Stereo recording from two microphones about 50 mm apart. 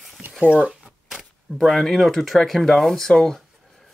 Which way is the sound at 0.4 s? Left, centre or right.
Right.